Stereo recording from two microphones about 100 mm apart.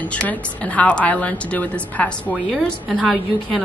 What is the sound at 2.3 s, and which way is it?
A woman's voice, centre (ahead or behind).